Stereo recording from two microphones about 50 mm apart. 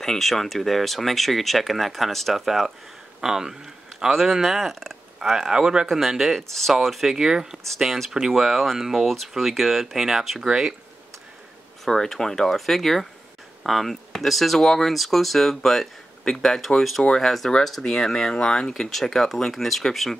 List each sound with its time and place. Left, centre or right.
0.0 s a man's voice: centre
5.3 s speech: centre
11.8 s speech: centre